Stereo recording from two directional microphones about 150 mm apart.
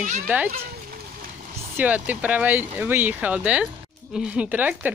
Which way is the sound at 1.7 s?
10° right (ahead or behind).